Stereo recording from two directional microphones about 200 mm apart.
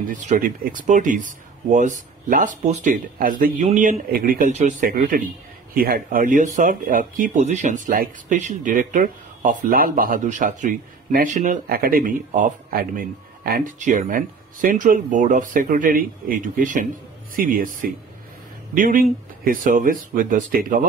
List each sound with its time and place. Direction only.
0.1 s speech: 40° right (ahead or behind)